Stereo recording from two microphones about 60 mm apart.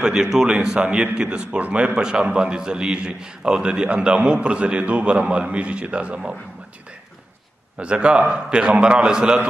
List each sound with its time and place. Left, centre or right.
0.0 s a man's voice: centre
7.8 s a man's voice: centre